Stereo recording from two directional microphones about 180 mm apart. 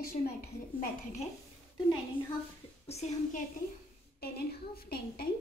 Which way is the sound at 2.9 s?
35° left (ahead or behind).